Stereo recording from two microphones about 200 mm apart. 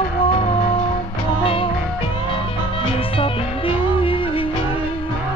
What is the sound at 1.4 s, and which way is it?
Music, 25° left (ahead or behind).